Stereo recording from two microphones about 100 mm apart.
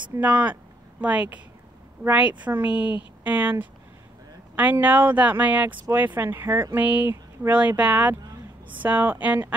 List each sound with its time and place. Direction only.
0.2 s speech: 15° right (ahead or behind)